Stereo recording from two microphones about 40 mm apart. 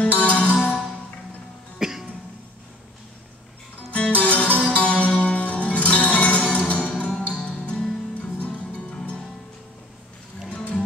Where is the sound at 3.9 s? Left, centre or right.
Left.